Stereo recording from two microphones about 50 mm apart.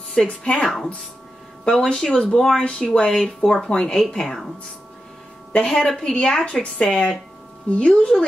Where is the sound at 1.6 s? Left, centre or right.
Centre.